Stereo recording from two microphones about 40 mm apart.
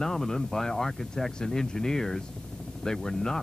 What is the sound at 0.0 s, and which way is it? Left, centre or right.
Speech, centre.